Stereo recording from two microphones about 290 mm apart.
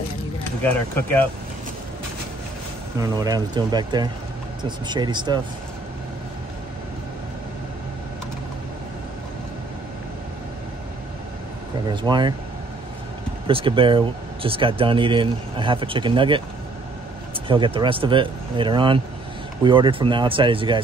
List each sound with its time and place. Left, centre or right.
0.9 s speech: centre
3.0 s speech: centre
11.9 s speech: centre
13.5 s speech: centre
17.5 s speech: centre